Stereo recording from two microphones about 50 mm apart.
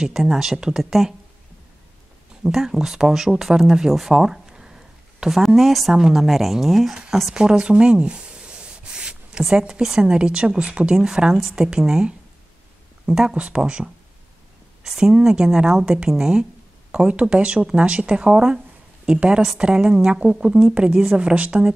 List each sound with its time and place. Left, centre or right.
0.0 s speech: centre
2.4 s speech: centre
7.3 s rub: centre
9.4 s speech: centre
20.9 s speech: centre
21.2 s speech: right